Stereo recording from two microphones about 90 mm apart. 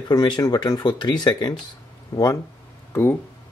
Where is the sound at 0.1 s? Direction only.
50° left (ahead or behind).